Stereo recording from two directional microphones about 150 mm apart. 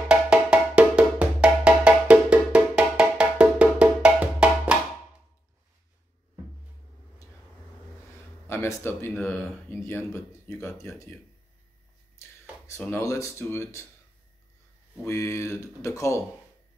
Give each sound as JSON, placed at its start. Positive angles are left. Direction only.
{"t": 0.1, "sound": "music", "side_deg": -5}
{"t": 8.5, "sound": "speech", "side_deg": 15}
{"t": 9.1, "sound": "speech", "side_deg": 5}
{"t": 9.7, "sound": "speech", "side_deg": 15}
{"t": 12.2, "sound": "speech", "side_deg": 15}
{"t": 15.0, "sound": "speech", "side_deg": 20}